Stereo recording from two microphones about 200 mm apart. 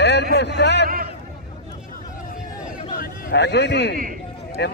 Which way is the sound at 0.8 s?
45° right (ahead or behind).